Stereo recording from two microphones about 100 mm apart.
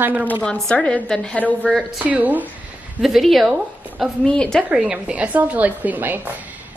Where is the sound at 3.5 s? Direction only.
10° right (ahead or behind).